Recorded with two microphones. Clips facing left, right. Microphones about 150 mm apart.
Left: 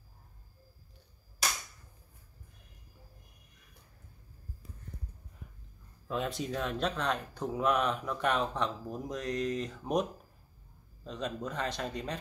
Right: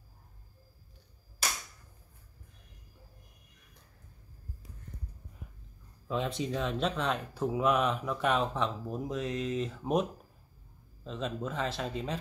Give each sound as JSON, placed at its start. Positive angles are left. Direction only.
{"t": 6.0, "sound": "speech", "side_deg": 0}
{"t": 11.1, "sound": "speech", "side_deg": 0}